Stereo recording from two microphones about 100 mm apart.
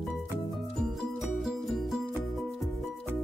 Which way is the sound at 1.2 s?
Centre (ahead or behind).